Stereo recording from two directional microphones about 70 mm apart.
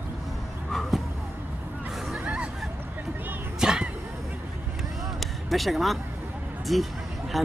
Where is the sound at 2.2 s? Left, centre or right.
Centre.